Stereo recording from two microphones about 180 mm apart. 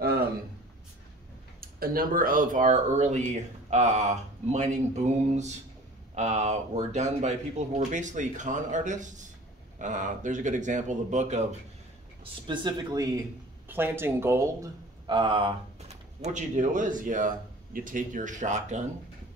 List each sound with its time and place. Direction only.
1.6 s speech: 55° right (ahead or behind)
12.4 s speech: 20° right (ahead or behind); by 18.9 s 40° right (ahead or behind)